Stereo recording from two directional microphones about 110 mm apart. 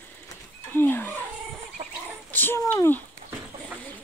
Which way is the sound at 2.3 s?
20° left (ahead or behind).